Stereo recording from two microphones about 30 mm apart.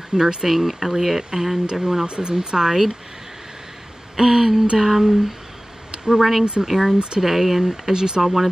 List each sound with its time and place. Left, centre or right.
0.1 s speech: right
2.0 s speech: right
4.2 s speech: centre
5.9 s a sound: right
6.7 s speech: centre
7.9 s speech: right